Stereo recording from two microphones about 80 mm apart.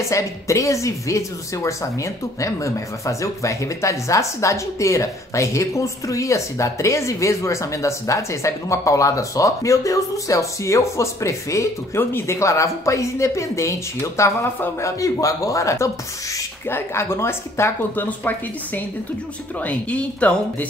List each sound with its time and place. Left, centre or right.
0.1 s a woman's voice: left
12.0 s a woman's voice: left
19.6 s speech: centre